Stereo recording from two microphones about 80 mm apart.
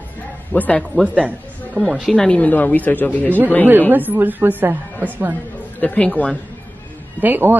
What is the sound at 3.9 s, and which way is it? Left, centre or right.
A woman's voice, right.